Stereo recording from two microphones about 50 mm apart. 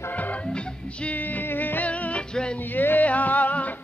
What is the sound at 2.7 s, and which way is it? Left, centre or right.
Music, left.